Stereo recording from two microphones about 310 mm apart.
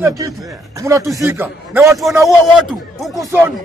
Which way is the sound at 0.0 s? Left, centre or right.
Centre.